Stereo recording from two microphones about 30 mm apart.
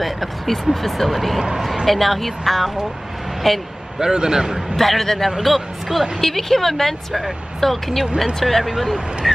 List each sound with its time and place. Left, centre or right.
0.7 s speech: centre
4.0 s a man's voice: centre
4.6 s speech: centre